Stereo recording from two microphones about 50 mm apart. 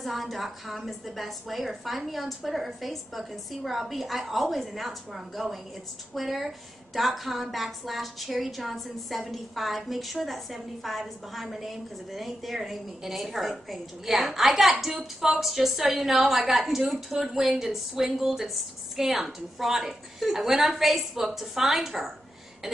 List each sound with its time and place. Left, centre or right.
0.0 s a woman's voice: centre